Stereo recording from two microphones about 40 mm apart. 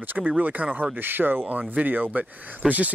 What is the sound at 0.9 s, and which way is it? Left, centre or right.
Speech, right.